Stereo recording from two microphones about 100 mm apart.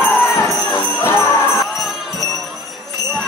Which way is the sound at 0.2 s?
25° left (ahead or behind).